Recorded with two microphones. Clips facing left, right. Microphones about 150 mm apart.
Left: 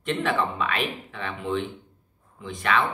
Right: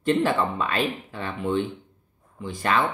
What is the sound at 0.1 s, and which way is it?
Speech, 35° right (ahead or behind).